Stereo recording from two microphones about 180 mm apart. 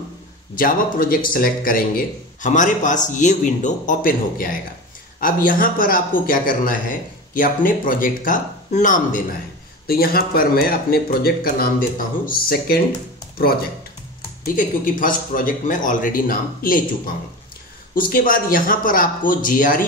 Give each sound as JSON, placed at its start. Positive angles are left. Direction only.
{"t": 0.6, "sound": "a man's voice", "side_deg": 50}
{"t": 14.4, "sound": "a man's voice", "side_deg": 50}